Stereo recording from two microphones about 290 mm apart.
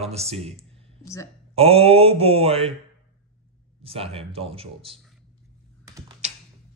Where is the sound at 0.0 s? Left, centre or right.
Right.